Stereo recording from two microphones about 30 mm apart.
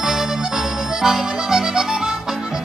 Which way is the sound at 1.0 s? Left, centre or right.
Centre.